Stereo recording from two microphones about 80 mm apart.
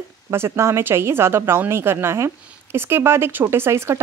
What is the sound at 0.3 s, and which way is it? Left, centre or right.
A woman's voice, right.